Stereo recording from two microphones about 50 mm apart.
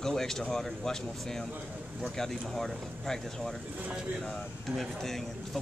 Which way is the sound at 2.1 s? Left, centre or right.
Centre.